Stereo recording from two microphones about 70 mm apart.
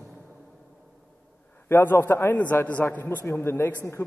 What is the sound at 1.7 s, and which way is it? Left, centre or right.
A man's voice, left.